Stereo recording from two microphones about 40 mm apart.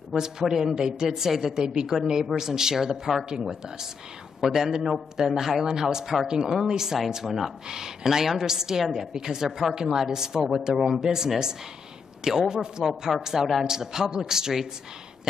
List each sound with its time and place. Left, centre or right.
0.2 s a woman's voice: centre
12.8 s speech: right
13.2 s a woman's voice: centre